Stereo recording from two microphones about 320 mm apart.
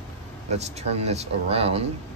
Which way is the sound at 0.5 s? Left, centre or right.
Centre.